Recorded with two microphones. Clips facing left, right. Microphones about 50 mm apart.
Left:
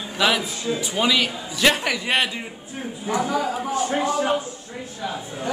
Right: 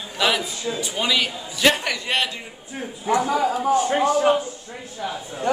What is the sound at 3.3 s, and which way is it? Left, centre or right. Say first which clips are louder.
Speech: right 4 dB; centre.